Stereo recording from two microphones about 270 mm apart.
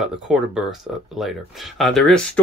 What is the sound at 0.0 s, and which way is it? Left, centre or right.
Speech, centre.